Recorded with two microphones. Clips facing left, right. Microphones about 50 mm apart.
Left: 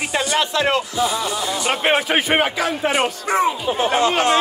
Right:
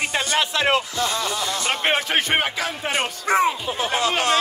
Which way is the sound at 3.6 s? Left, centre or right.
Left.